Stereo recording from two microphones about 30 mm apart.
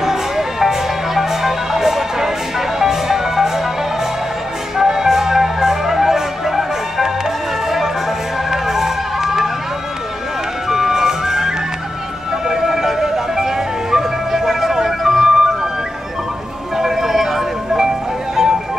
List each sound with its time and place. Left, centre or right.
0.0 s music: centre
4.7 s music: centre
8.5 s a sound: centre
10.7 s music: centre
15.3 s music: right
16.7 s music: centre